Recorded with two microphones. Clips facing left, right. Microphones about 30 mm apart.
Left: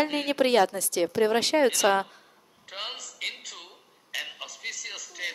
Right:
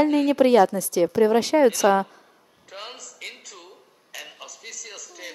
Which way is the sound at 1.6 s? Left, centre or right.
Left.